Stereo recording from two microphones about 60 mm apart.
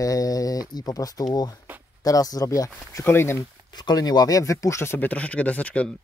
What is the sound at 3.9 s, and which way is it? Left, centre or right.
Speech, left.